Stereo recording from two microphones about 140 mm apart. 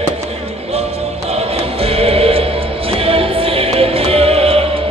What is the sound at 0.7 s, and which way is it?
Music, 45° right (ahead or behind).